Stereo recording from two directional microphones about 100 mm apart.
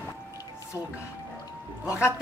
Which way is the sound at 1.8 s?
25° left (ahead or behind).